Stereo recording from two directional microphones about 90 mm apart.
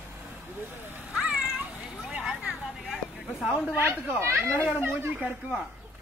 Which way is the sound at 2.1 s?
15° right (ahead or behind).